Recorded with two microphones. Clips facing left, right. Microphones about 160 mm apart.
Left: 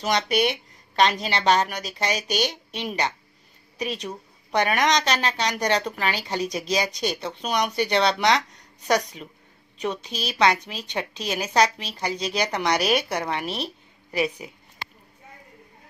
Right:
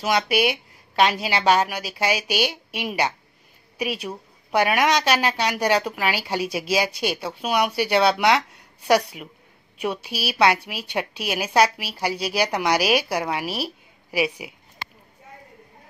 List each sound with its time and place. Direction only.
0.0 s a woman's voice: 5° right (ahead or behind)